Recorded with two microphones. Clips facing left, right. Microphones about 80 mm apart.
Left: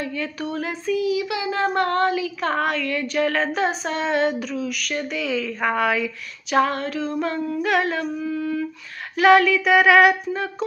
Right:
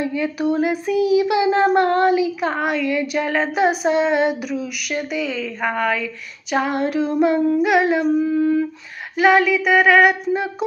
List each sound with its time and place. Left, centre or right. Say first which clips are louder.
0.0 s speech: right 7 dB; centre
2.5 s female singing: right 3 dB; centre
6.5 s female singing: right 1 dB; centre
8.4 s humming: right 8 dB; right
9.1 s a sound: even; centre